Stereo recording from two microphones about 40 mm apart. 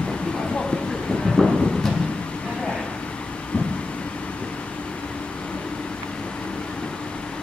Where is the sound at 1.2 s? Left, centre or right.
Centre.